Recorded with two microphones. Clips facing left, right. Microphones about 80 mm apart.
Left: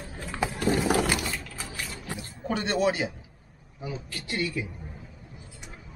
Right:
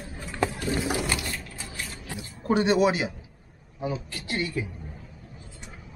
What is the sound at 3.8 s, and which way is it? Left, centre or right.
Speech, right.